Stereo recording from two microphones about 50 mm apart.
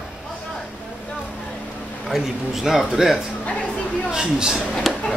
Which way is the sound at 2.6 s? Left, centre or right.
Centre.